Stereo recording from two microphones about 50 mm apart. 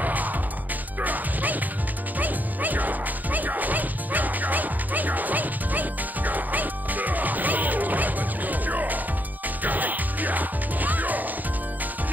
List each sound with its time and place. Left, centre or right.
0.0 s music: right